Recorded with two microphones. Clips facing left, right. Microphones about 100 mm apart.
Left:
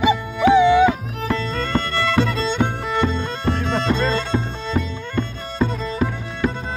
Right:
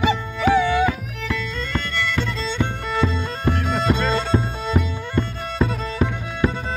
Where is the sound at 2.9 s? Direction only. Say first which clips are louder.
Left 2 dB; centre (ahead or behind).